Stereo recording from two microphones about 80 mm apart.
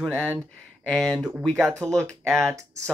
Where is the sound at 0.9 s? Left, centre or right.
Centre.